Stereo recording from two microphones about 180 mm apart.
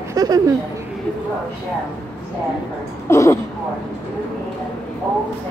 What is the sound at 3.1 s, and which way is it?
Speech, 15° left (ahead or behind).